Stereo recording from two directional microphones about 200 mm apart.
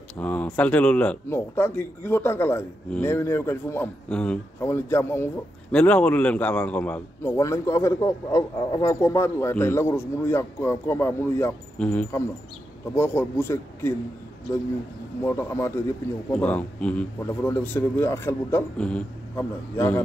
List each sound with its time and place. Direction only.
0.2 s a man's voice: 10° left (ahead or behind)
15.2 s a man's voice: 15° left (ahead or behind)